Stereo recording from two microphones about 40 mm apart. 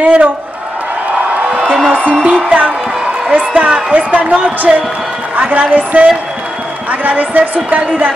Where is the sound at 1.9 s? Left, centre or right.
Right.